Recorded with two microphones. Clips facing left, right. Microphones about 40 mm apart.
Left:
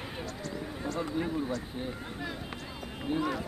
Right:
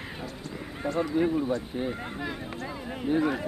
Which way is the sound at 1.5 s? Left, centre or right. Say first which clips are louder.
Right 6 dB; right.